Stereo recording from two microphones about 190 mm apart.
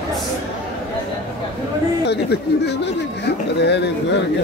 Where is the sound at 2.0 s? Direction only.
60° left (ahead or behind).